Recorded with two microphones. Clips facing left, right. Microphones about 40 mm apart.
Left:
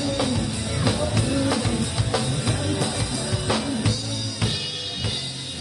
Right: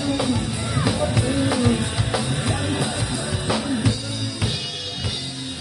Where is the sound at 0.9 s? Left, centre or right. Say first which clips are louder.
Right 1 dB; centre.